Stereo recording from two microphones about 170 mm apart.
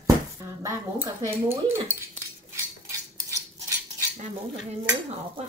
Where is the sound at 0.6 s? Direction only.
20° right (ahead or behind).